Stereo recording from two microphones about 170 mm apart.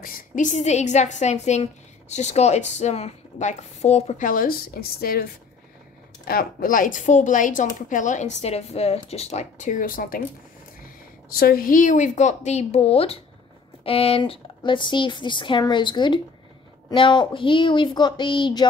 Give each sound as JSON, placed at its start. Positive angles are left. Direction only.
{"t": 0.0, "sound": "a woman's voice", "side_deg": 50}
{"t": 11.3, "sound": "a woman's voice", "side_deg": 60}